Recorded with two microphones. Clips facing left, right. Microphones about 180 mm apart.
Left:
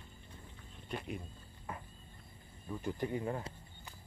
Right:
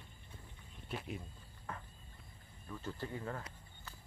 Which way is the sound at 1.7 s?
10° left (ahead or behind).